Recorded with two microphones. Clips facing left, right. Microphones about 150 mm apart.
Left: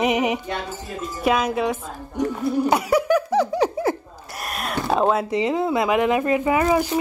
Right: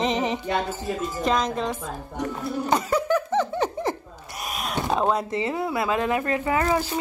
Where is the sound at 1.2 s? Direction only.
10° left (ahead or behind).